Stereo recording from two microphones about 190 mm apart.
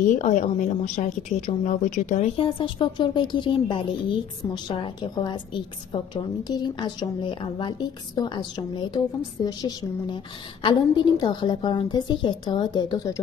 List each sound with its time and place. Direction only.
0.0 s a woman's voice: 40° left (ahead or behind); by 13.2 s 20° left (ahead or behind)